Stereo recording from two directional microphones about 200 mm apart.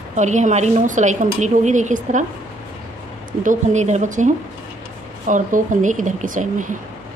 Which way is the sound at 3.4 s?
35° right (ahead or behind).